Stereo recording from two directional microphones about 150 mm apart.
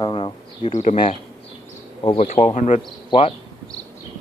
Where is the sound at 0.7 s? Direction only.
55° left (ahead or behind).